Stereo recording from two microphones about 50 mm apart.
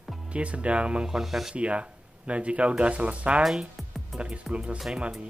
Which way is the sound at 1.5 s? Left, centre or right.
Right.